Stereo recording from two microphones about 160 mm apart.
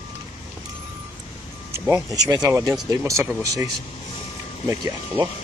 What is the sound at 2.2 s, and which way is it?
Speech, 20° right (ahead or behind).